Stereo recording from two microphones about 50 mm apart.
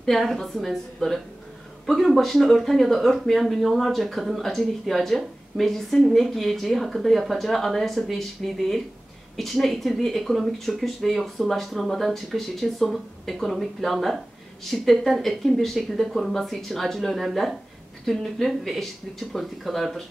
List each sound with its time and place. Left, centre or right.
0.0 s speech: centre